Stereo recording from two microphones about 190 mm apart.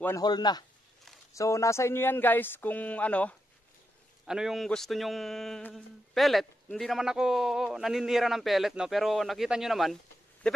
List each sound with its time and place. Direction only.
0.0 s speech: 20° left (ahead or behind); by 9.9 s centre (ahead or behind)